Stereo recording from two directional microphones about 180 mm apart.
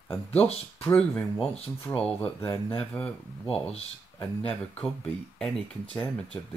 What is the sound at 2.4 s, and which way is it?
Speech, 30° left (ahead or behind).